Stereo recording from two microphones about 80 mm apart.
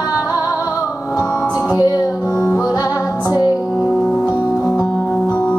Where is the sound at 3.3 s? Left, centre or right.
Left.